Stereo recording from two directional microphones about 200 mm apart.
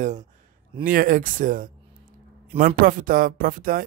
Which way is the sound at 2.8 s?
45° right (ahead or behind).